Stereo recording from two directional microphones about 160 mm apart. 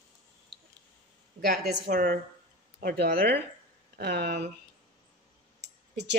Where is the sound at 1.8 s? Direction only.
75° right (ahead or behind).